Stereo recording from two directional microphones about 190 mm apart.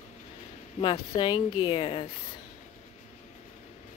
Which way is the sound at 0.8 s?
25° left (ahead or behind).